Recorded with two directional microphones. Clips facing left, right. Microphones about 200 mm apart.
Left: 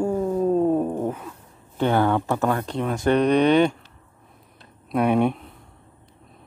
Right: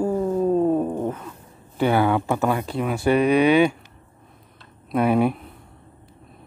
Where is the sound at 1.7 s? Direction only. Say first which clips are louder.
Right 1 dB; 10° right (ahead or behind).